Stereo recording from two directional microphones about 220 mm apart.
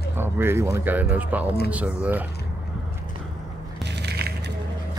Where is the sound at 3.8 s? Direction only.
50° right (ahead or behind).